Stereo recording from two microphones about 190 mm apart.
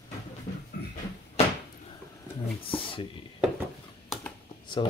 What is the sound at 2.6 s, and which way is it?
Speech, 30° left (ahead or behind).